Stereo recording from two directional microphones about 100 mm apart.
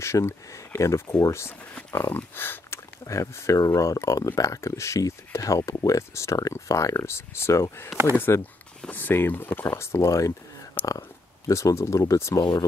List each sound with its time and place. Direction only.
0.0 s speech: 25° left (ahead or behind)
12.4 s speech: 45° left (ahead or behind)